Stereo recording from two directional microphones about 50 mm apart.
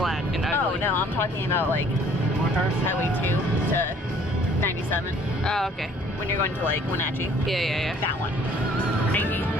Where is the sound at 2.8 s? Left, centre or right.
Left.